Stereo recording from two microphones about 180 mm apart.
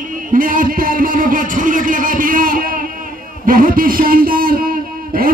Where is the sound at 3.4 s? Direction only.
50° right (ahead or behind).